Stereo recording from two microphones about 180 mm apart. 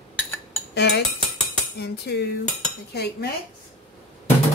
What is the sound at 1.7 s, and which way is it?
A woman's voice, 65° left (ahead or behind).